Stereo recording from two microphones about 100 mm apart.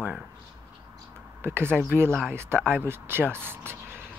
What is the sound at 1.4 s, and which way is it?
Speech, 25° right (ahead or behind).